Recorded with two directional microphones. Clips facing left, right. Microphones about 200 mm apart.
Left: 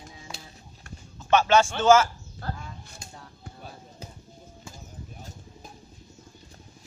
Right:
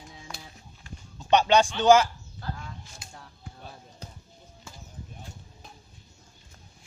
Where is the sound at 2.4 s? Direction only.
50° left (ahead or behind).